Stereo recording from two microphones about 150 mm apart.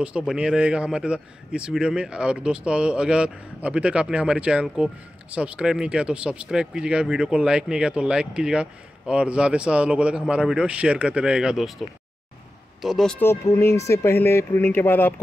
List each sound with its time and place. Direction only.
0.3 s a man's voice: 5° right (ahead or behind)
12.8 s speech: centre (ahead or behind)
13.2 s speech: 15° left (ahead or behind)